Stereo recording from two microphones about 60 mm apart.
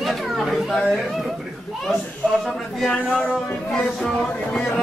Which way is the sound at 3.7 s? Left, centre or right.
Centre.